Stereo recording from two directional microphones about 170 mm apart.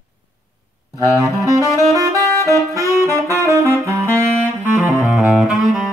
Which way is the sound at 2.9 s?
20° right (ahead or behind).